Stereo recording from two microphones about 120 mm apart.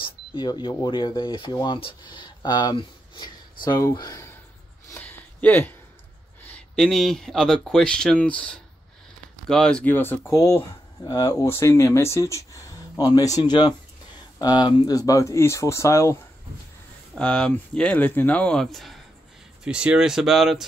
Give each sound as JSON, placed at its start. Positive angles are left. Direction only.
{"t": 0.0, "sound": "speech", "side_deg": 40}
{"t": 5.0, "sound": "a sound", "side_deg": 15}
{"t": 6.7, "sound": "speech", "side_deg": 5}
{"t": 17.2, "sound": "speech", "side_deg": 5}
{"t": 19.6, "sound": "speech", "side_deg": -10}